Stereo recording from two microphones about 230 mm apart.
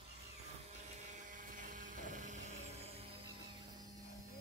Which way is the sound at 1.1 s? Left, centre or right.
Right.